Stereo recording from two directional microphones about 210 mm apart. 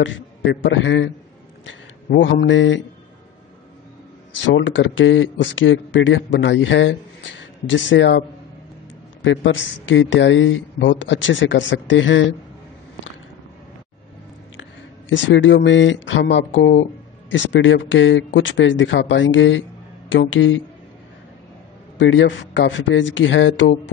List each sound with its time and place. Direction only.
0.0 s a woman's voice: 60° left (ahead or behind)
4.6 s a woman's voice: 65° left (ahead or behind)
9.2 s a woman's voice: 65° left (ahead or behind)
14.6 s a woman's voice: 60° left (ahead or behind)
21.9 s a woman's voice: 60° left (ahead or behind)